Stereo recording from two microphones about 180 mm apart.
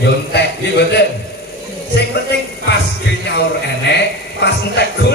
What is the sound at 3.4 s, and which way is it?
A man's voice, 70° left (ahead or behind).